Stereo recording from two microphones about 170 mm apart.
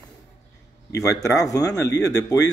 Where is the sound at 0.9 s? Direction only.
20° left (ahead or behind).